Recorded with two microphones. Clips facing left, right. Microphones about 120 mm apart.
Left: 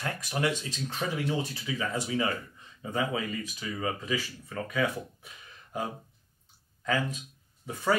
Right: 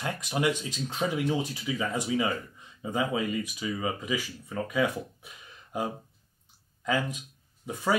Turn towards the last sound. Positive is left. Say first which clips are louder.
# even
turn(degrees=-15)  # may be behind; listen again after turning